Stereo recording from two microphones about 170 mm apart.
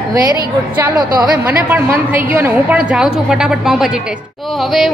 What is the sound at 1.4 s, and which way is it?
A woman's voice, 10° right (ahead or behind).